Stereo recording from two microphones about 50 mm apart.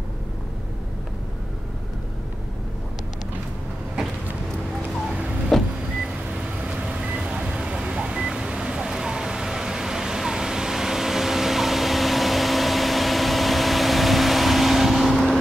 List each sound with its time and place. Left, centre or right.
5.5 s vehicle: centre
6.6 s vehicle: centre